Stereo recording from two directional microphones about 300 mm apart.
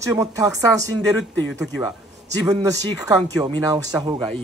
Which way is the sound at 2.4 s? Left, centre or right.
Centre.